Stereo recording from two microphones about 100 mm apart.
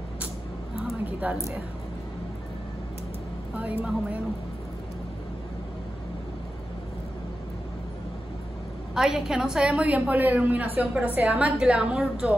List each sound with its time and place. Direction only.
1.0 s a woman's voice: 15° right (ahead or behind)
8.9 s a woman's voice: 5° right (ahead or behind)